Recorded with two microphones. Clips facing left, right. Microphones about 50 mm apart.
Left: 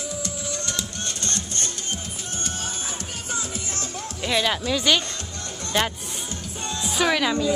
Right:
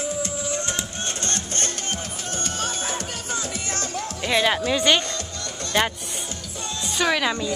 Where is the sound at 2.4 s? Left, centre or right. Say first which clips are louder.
Right 4 dB; right.